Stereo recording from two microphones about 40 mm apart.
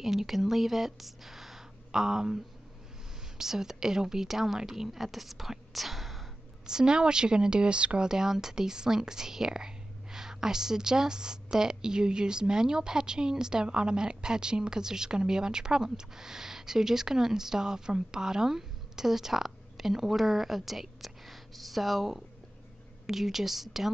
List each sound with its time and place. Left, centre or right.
0.0 s a woman's voice: centre
6.6 s a woman's voice: centre
8.1 s a woman's voice: centre